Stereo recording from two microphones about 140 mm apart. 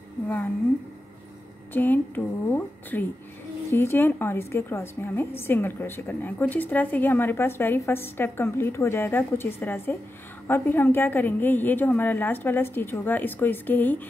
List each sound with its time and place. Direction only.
1.7 s a woman's voice: 15° left (ahead or behind)